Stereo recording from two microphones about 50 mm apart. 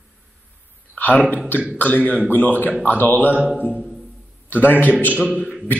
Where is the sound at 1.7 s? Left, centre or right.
Left.